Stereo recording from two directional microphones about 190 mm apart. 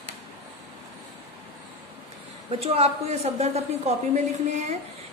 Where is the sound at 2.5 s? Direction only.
30° right (ahead or behind).